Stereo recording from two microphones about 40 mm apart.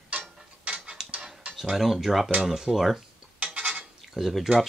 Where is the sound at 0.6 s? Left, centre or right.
Right.